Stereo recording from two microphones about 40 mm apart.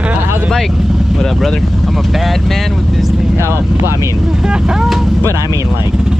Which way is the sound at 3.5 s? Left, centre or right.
Right.